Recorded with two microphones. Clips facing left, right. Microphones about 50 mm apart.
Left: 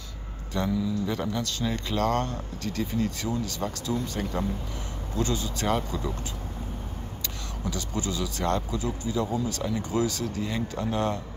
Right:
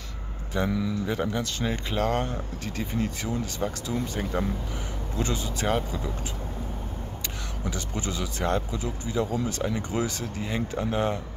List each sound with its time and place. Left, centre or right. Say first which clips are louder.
0.6 s speech: even; centre
5.7 s speech: even; centre
7.7 s speech: left 2 dB; right